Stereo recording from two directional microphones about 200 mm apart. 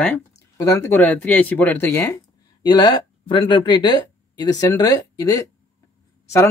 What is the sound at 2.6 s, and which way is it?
Speech, 20° left (ahead or behind).